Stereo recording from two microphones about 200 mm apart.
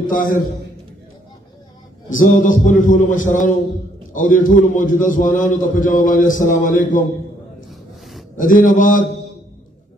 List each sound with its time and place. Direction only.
0.0 s a man's voice: 45° left (ahead or behind)
2.0 s a man's voice: 40° left (ahead or behind)
8.4 s a man's voice: 40° left (ahead or behind)